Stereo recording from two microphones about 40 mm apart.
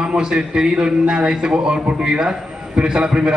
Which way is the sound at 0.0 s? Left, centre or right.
Right.